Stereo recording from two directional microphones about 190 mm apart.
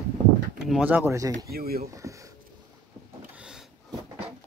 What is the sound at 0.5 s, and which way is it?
Speech, 5° right (ahead or behind).